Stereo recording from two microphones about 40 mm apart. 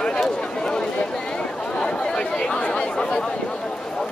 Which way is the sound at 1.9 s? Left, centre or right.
Left.